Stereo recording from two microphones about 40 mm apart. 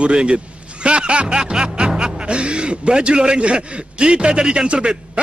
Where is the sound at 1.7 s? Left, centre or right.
Right.